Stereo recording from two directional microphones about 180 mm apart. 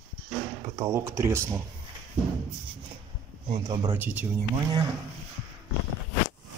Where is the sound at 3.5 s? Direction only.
20° right (ahead or behind).